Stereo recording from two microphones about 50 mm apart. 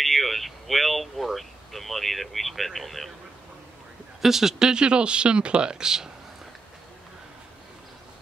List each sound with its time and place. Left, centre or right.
0.0 s speech: centre
4.2 s speech: centre